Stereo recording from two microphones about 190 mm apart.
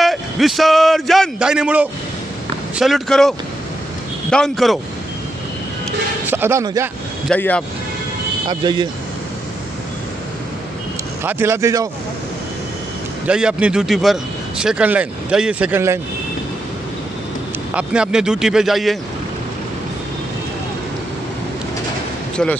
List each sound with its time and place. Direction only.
0.0 s a man's voice: centre (ahead or behind)
6.2 s speech: 10° right (ahead or behind)
7.2 s speech: 10° left (ahead or behind)
8.5 s speech: 25° right (ahead or behind)
11.2 s speech: 15° right (ahead or behind)
13.3 s speech: 5° right (ahead or behind)
17.7 s speech: 5° right (ahead or behind)